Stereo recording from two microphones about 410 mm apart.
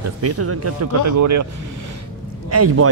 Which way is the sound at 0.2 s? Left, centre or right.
Right.